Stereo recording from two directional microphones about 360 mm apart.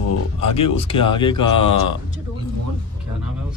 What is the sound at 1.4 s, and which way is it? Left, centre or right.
Speech, left.